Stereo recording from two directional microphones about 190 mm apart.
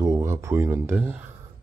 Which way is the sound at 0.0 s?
15° right (ahead or behind).